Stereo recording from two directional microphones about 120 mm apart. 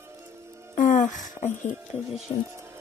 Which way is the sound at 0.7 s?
90° left.